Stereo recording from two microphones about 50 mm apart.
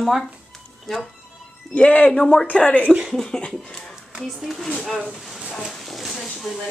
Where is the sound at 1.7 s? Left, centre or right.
Left.